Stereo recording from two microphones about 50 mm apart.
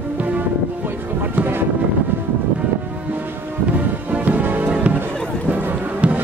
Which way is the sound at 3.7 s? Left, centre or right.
Right.